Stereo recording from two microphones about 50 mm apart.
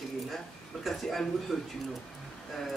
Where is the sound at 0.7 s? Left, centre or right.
Centre.